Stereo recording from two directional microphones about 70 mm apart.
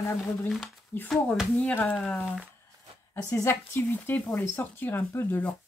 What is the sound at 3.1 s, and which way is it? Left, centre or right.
Speech, left.